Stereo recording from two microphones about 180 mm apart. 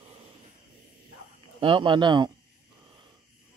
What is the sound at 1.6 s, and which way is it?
Speech, 30° right (ahead or behind).